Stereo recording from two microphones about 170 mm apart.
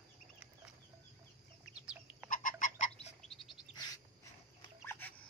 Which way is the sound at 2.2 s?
50° left (ahead or behind).